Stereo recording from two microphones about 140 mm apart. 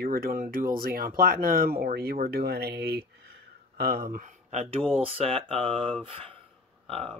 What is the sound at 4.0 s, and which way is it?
Speech, 80° right.